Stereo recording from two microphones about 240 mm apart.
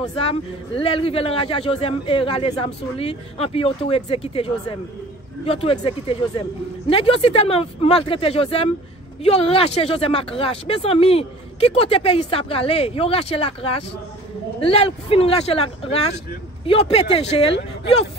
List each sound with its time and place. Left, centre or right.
0.0 s a man's voice: left